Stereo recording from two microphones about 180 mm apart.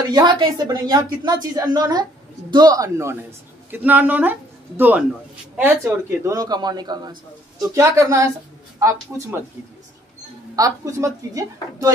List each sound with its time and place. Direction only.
0.1 s a woman's voice: 25° right (ahead or behind)
10.5 s a man's voice: 20° right (ahead or behind)